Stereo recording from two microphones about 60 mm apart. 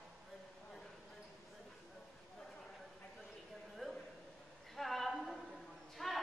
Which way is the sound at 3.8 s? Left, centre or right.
Centre.